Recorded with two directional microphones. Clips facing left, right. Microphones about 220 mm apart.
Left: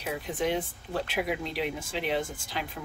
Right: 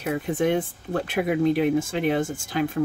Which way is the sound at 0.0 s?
50° right (ahead or behind).